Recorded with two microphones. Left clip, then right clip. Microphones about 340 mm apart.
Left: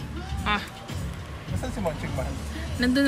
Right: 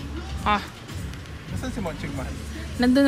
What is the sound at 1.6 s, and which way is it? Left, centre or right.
Speech, left.